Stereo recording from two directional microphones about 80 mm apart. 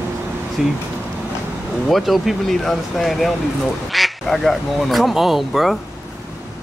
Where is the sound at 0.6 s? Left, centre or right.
Centre.